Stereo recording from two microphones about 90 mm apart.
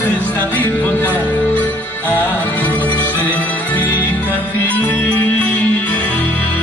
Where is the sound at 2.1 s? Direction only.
20° left (ahead or behind).